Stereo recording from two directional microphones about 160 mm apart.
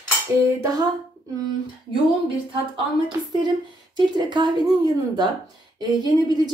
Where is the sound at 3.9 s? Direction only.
25° right (ahead or behind).